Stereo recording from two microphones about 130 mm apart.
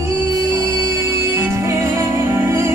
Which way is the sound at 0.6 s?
25° right (ahead or behind).